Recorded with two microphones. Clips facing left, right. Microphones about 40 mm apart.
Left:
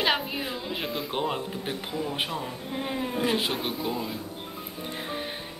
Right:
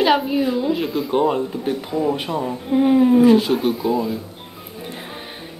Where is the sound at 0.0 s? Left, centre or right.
Centre.